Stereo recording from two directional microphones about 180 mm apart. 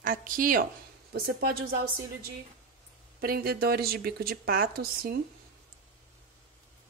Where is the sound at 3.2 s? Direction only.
55° right (ahead or behind).